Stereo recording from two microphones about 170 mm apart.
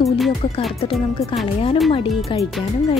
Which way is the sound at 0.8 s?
35° left (ahead or behind).